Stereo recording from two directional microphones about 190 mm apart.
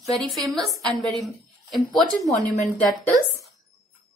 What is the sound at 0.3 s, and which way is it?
A woman's voice, centre (ahead or behind).